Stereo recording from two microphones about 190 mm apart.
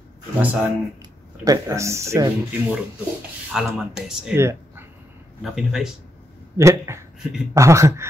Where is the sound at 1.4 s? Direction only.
15° right (ahead or behind).